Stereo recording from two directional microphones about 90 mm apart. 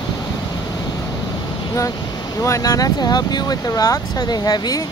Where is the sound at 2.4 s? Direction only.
35° left (ahead or behind).